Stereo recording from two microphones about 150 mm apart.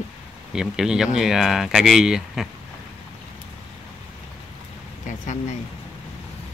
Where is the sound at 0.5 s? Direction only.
5° right (ahead or behind).